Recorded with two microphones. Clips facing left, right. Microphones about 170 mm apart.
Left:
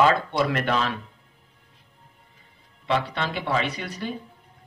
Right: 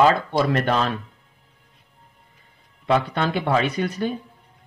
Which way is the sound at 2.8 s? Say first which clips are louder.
Right 5 dB; 50° right (ahead or behind).